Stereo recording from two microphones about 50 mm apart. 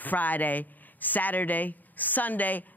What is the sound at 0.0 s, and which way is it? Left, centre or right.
Speech, left.